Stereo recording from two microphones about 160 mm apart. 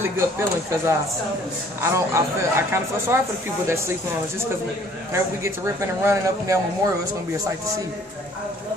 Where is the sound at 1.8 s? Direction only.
15° right (ahead or behind).